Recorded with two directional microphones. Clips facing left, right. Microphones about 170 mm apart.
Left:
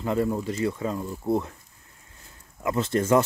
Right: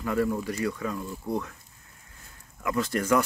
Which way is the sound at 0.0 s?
25° left (ahead or behind).